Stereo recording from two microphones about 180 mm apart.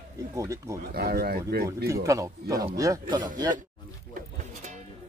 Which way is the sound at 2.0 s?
15° right (ahead or behind).